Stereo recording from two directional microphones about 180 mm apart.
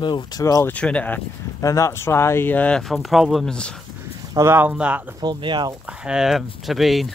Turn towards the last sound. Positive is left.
turn(degrees=0)  # may be behind; listen again after turning